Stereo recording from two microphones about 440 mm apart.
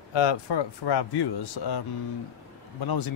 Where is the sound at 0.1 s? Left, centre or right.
Left.